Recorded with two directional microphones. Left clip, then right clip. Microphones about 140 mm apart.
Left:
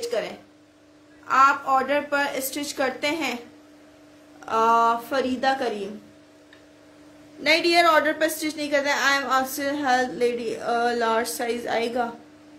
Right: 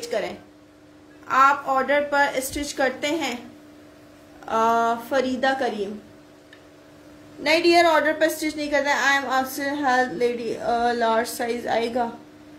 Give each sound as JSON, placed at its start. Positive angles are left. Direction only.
{"t": 0.0, "sound": "a sound", "side_deg": 15}
{"t": 1.2, "sound": "a woman's voice", "side_deg": 15}
{"t": 4.5, "sound": "a woman's voice", "side_deg": 15}
{"t": 7.4, "sound": "a woman's voice", "side_deg": 15}